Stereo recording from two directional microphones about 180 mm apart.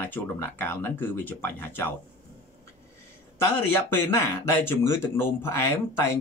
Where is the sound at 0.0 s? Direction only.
10° left (ahead or behind).